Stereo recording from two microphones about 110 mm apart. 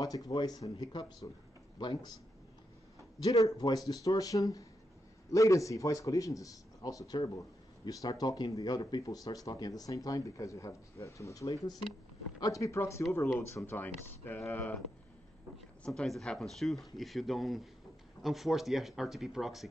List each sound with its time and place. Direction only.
0.0 s a man's voice: 35° left (ahead or behind)
3.2 s a man's voice: 30° left (ahead or behind); by 14.8 s 15° left (ahead or behind)
15.8 s speech: 5° left (ahead or behind)